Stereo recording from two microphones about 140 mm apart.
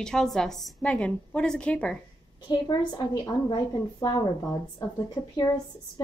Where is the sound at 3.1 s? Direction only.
30° left (ahead or behind).